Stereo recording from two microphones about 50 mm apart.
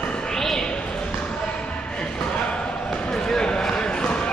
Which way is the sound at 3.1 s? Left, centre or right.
Centre.